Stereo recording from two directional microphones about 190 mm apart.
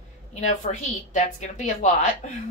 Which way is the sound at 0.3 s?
40° left (ahead or behind).